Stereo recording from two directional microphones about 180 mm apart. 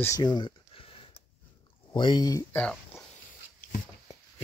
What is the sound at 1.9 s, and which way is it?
Speech, 25° left (ahead or behind).